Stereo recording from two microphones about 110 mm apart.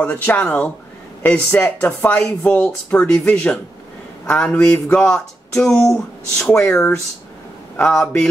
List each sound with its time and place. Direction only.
0.0 s speech: 15° left (ahead or behind)
7.8 s speech: 10° left (ahead or behind)